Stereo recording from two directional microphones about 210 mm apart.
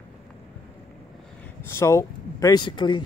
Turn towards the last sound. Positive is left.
turn(degrees=20)  # may be behind; listen again after turning